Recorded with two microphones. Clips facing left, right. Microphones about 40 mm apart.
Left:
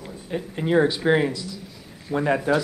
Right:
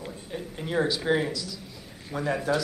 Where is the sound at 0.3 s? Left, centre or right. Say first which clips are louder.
Left 9 dB; left.